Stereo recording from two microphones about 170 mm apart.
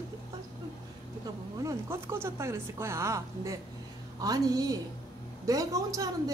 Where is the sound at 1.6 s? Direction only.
15° right (ahead or behind).